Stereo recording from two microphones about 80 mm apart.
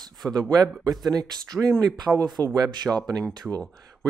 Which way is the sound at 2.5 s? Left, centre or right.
Right.